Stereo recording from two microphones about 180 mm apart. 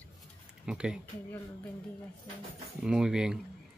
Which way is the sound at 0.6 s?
5° right (ahead or behind).